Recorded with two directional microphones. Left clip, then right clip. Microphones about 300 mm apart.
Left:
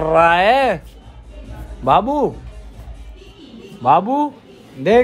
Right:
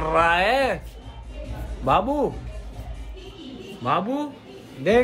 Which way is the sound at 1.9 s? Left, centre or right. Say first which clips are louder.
Left 6 dB; left.